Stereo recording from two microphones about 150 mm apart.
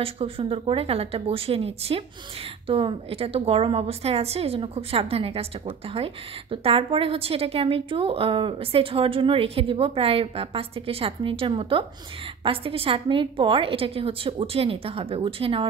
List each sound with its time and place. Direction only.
0.0 s a woman's voice: 40° right (ahead or behind)